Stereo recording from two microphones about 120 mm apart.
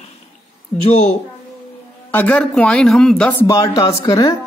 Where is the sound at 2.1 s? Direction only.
15° left (ahead or behind).